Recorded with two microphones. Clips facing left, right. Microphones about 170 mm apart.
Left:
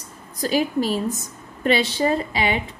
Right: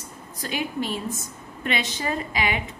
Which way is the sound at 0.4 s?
35° left (ahead or behind).